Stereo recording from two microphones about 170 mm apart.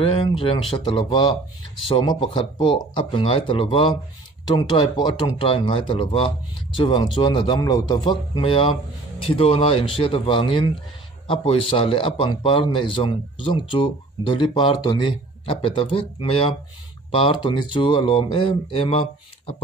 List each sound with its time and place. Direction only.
0.0 s a man's voice: 30° left (ahead or behind)